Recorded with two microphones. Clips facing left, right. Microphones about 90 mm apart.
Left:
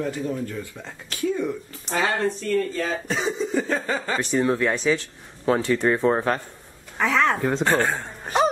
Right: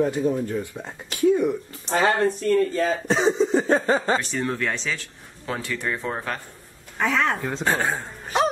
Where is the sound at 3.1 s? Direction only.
30° right (ahead or behind).